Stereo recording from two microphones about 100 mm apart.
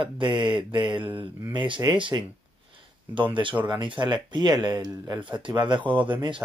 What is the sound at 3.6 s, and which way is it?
Speech, 50° right (ahead or behind).